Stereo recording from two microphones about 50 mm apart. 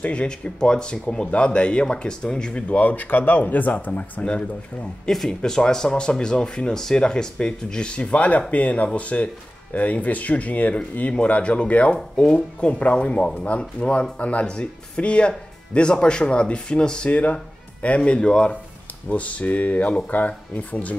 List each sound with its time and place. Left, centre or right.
0.0 s speech: left
2.7 s speech: left
4.2 s speech: left
5.1 s speech: centre
17.1 s speech: left
19.0 s speech: left